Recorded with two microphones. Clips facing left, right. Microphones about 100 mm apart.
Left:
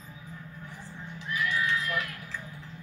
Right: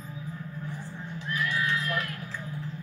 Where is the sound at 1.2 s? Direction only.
40° right (ahead or behind).